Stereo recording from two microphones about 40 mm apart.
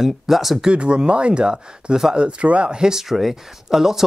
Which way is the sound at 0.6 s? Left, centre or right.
Right.